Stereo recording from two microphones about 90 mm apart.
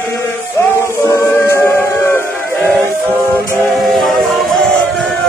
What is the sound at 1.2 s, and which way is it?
Music, 30° left (ahead or behind).